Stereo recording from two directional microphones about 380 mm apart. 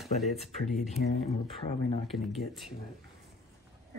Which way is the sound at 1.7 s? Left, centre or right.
Centre.